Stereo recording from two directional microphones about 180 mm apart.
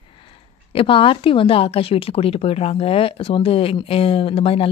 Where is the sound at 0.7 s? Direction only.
30° left (ahead or behind).